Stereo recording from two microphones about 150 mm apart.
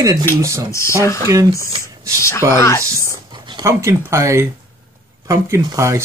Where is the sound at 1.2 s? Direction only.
20° right (ahead or behind).